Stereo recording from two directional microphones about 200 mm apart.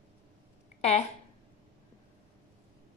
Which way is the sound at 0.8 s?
30° left (ahead or behind).